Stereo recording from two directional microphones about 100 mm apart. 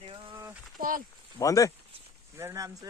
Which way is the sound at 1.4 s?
35° left (ahead or behind).